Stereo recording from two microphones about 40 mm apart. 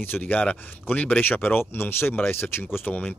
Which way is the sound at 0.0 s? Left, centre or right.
Left.